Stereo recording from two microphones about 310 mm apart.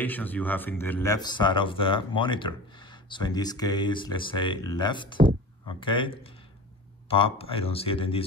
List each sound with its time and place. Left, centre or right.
0.0 s speech: centre